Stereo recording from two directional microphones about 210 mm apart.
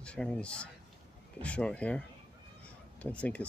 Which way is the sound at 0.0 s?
5° left (ahead or behind).